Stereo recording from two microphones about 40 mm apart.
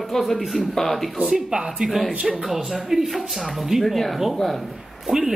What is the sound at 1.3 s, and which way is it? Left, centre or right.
Speech, centre.